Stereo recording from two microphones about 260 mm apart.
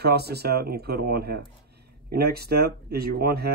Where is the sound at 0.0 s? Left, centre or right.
Right.